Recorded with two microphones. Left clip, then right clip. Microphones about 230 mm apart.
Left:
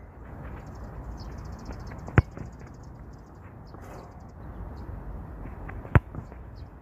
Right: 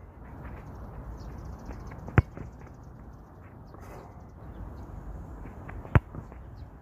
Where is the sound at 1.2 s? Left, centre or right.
Left.